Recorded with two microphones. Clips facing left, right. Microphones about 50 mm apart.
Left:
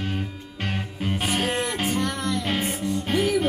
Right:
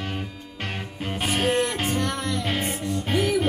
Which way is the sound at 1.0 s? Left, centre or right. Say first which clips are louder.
Right 1 dB; centre.